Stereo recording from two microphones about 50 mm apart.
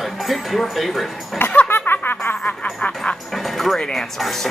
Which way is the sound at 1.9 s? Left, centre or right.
Left.